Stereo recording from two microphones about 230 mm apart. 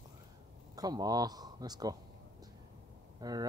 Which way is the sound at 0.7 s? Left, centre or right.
Centre.